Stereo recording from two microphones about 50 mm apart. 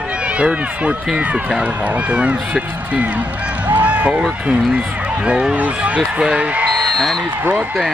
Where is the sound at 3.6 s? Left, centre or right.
Right.